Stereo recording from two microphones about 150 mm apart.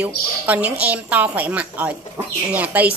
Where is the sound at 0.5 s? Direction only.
10° right (ahead or behind).